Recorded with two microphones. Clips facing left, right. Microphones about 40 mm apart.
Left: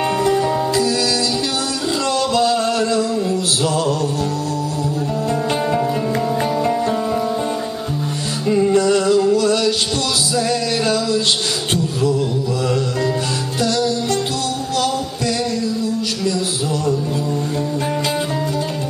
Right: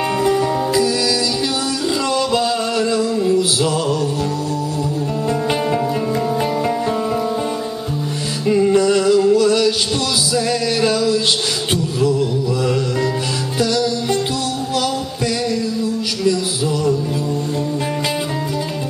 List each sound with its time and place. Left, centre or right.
0.2 s music: centre
2.1 s music: centre
5.3 s music: centre
8.5 s music: centre